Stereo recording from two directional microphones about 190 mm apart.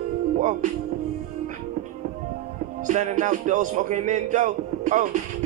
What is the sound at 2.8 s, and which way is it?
Speech, 40° right (ahead or behind).